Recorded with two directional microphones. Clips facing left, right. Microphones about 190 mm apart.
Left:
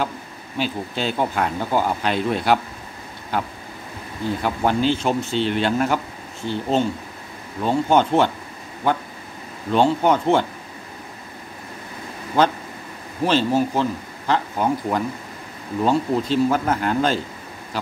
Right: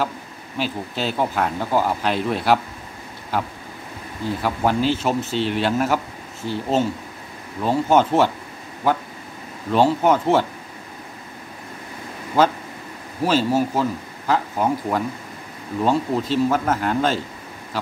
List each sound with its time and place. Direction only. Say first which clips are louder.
0.6 s speech: left 1 dB; centre (ahead or behind)
12.4 s speech: right 1 dB; 5° right (ahead or behind)